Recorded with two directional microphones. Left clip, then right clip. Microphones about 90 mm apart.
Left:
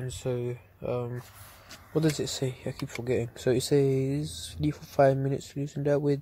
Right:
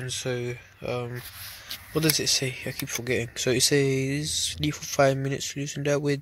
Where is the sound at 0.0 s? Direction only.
20° left (ahead or behind).